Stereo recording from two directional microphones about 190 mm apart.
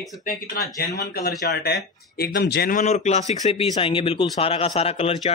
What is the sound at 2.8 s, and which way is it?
A man's voice, 35° left (ahead or behind).